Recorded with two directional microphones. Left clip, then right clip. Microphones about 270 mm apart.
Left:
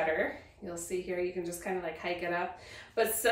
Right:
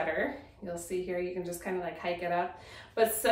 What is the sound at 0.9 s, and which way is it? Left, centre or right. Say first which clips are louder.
Speech: even; centre.